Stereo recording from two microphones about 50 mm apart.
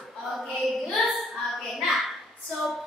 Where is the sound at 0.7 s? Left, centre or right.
Centre.